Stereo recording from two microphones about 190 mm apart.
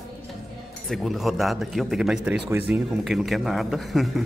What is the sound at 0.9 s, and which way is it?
A man's voice, centre (ahead or behind).